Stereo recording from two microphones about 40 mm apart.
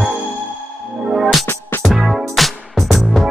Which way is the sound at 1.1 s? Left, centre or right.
Centre.